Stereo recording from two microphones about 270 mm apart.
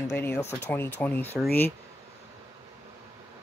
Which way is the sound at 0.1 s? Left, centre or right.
Centre.